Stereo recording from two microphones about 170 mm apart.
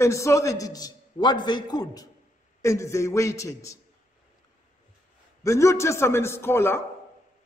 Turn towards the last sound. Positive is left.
turn(degrees=15)  # may be behind; listen again after turning